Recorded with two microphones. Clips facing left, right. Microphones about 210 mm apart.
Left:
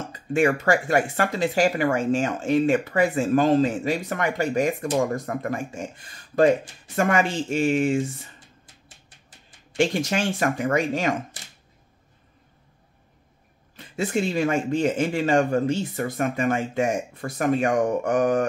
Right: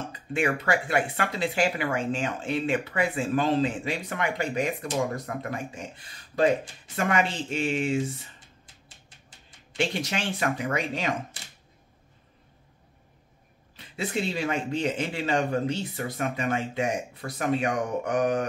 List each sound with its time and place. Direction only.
0.1 s speech: 45° left (ahead or behind)
7.0 s speech: 45° left (ahead or behind)
9.8 s speech: 45° left (ahead or behind)
13.7 s speech: 45° left (ahead or behind)